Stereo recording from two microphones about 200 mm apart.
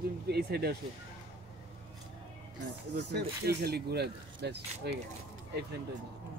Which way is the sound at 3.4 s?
55° right (ahead or behind).